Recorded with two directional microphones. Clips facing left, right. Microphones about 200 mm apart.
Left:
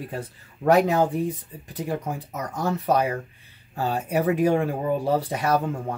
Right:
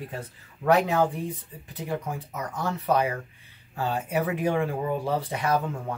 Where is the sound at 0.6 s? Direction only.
40° left (ahead or behind).